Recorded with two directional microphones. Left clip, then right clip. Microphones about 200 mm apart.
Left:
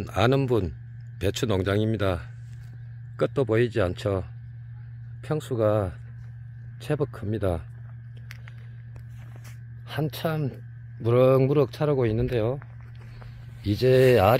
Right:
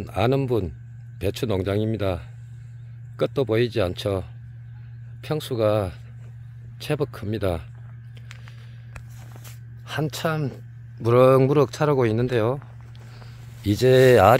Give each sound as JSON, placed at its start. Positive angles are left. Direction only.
{"t": 0.0, "sound": "speech", "side_deg": -5}
{"t": 9.8, "sound": "speech", "side_deg": -5}
{"t": 13.6, "sound": "speech", "side_deg": -20}